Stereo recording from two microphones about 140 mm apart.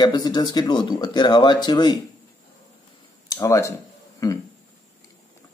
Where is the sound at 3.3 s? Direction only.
25° left (ahead or behind).